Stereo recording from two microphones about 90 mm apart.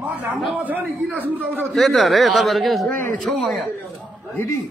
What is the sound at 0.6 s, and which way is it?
A man's voice, 20° right (ahead or behind).